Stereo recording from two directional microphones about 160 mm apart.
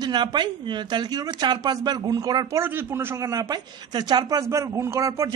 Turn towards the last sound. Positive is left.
turn(degrees=-20)  # may be behind; listen again after turning